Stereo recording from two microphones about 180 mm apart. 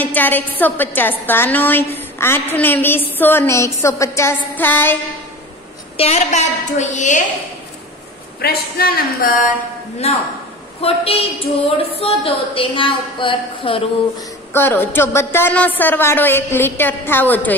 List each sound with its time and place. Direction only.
0.0 s a woman's voice: 10° left (ahead or behind)
5.9 s a woman's voice: 35° left (ahead or behind)
8.4 s a sound: 60° left (ahead or behind)
10.0 s a woman's voice: 35° left (ahead or behind)
14.5 s a woman's voice: 10° left (ahead or behind)